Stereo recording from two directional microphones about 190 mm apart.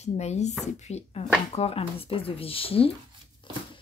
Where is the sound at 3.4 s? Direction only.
25° left (ahead or behind).